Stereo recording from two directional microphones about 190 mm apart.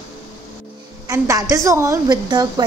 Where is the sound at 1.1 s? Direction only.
15° right (ahead or behind).